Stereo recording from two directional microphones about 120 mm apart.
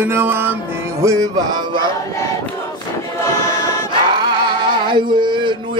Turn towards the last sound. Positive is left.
turn(degrees=-40)  # may be behind; listen again after turning